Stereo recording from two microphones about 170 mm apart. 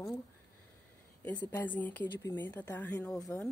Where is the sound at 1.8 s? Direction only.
10° left (ahead or behind).